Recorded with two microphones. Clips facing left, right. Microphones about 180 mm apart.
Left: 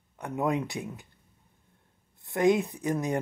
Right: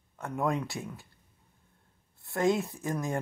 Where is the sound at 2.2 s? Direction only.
20° left (ahead or behind).